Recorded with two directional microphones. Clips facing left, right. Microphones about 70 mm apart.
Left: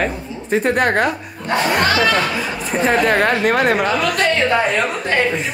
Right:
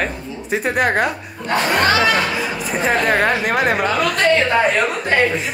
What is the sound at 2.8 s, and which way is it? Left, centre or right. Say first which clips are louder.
Speech: left 1 dB; centre.